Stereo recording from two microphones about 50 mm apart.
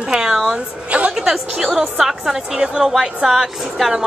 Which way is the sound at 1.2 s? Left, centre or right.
Centre.